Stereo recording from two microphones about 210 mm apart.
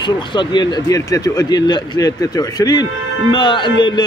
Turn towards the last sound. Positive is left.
turn(degrees=20)  # may be behind; listen again after turning